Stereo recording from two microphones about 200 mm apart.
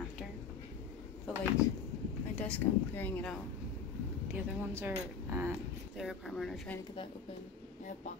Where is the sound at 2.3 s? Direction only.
5° left (ahead or behind).